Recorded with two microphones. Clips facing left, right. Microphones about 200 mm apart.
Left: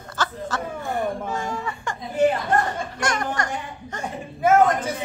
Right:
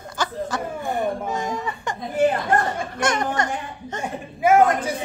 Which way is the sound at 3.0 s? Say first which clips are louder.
Right 3 dB; 25° right (ahead or behind).